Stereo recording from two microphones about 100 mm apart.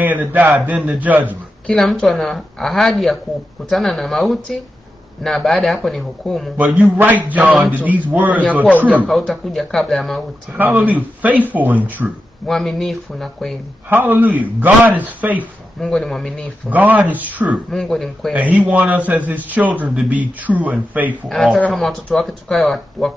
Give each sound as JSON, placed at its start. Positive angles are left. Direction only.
{"t": 0.0, "sound": "a man's voice", "side_deg": -15}
{"t": 1.7, "sound": "speech", "side_deg": 5}
{"t": 6.5, "sound": "a man's voice", "side_deg": -15}
{"t": 9.1, "sound": "speech", "side_deg": 0}
{"t": 10.5, "sound": "a man's voice", "side_deg": -15}
{"t": 12.4, "sound": "speech", "side_deg": 0}
{"t": 13.8, "sound": "a man's voice", "side_deg": -20}
{"t": 15.8, "sound": "speech", "side_deg": 5}
{"t": 16.7, "sound": "a man's voice", "side_deg": -15}
{"t": 17.6, "sound": "speech", "side_deg": 5}
{"t": 18.3, "sound": "a man's voice", "side_deg": -15}
{"t": 21.3, "sound": "speech", "side_deg": 0}